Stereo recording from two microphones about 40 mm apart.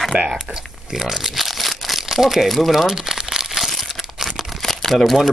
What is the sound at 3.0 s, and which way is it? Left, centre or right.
Crumpling, centre.